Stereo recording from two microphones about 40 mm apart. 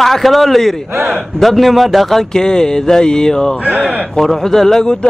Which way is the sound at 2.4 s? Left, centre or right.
Centre.